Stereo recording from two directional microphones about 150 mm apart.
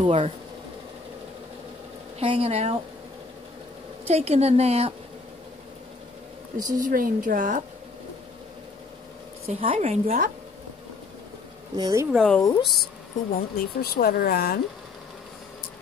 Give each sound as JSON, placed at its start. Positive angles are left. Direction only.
{"t": 0.0, "sound": "speech", "side_deg": -35}
{"t": 2.1, "sound": "a woman's voice", "side_deg": -40}
{"t": 4.1, "sound": "a woman's voice", "side_deg": -45}
{"t": 6.5, "sound": "a woman's voice", "side_deg": -60}
{"t": 9.5, "sound": "a woman's voice", "side_deg": -40}
{"t": 11.7, "sound": "speech", "side_deg": -25}
{"t": 12.1, "sound": "speech", "side_deg": 0}
{"t": 13.3, "sound": "speech", "side_deg": 90}